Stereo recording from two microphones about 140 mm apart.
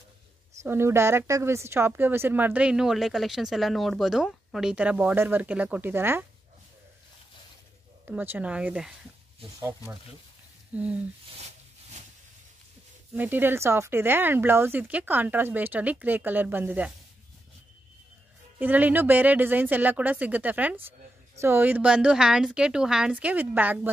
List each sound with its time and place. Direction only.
0.6 s speech: 20° right (ahead or behind)
8.0 s speech: 15° right (ahead or behind)
9.6 s speech: 20° right (ahead or behind)
13.1 s speech: 15° right (ahead or behind)
18.6 s speech: 10° right (ahead or behind)